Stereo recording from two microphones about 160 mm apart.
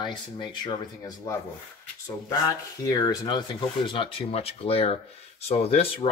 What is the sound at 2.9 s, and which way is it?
Speech, 25° left (ahead or behind).